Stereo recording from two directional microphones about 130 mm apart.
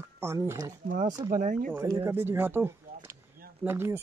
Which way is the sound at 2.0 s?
15° right (ahead or behind).